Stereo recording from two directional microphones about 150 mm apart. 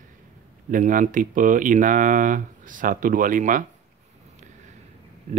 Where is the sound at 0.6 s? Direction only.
60° right (ahead or behind).